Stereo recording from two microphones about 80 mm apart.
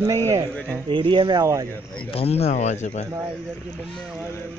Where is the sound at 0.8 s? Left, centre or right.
Right.